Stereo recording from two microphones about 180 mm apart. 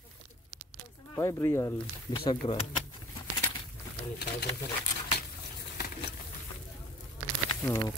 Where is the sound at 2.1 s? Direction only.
30° left (ahead or behind).